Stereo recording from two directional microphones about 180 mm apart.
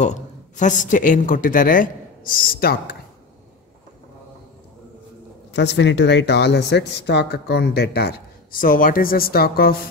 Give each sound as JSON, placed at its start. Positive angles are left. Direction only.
{"t": 0.0, "sound": "speech", "side_deg": 40}
{"t": 5.5, "sound": "speech", "side_deg": 70}